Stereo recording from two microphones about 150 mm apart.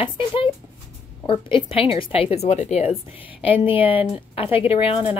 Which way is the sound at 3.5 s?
35° left (ahead or behind).